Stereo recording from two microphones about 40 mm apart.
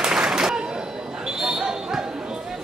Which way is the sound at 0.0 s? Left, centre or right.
Centre.